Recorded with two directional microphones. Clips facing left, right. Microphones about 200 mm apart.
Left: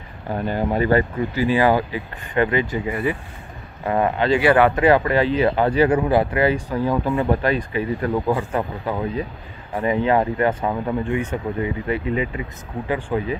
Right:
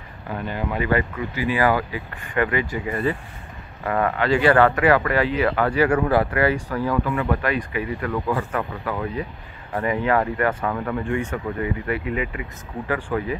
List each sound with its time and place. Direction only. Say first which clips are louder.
0.3 s speech: left 5 dB; 35° left (ahead or behind); by 13.4 s 20° left (ahead or behind)